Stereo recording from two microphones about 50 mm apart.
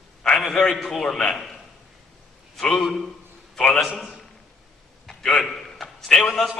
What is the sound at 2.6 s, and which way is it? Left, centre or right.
A man's voice, centre.